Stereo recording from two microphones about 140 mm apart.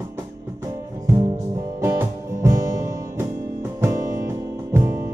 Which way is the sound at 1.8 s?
20° right (ahead or behind).